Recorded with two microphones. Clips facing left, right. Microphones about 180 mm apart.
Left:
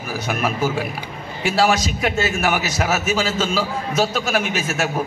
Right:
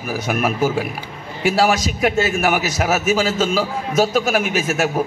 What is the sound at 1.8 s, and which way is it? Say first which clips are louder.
Speech: right 2 dB; 50° right (ahead or behind).